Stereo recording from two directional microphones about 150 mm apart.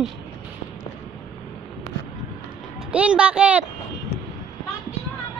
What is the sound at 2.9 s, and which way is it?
Speech, 5° right (ahead or behind).